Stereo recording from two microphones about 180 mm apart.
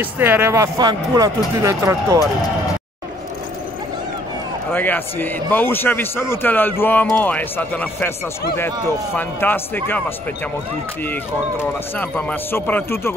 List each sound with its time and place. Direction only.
0.0 s speech: 10° right (ahead or behind)
4.7 s a man's voice: 10° left (ahead or behind)